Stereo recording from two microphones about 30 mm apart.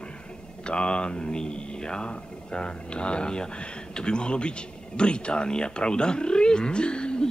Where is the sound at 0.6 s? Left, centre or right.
Left.